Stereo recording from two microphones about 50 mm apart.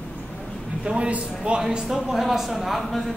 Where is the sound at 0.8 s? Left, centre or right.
Right.